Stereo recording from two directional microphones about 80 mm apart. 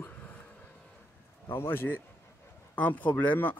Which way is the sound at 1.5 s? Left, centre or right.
Left.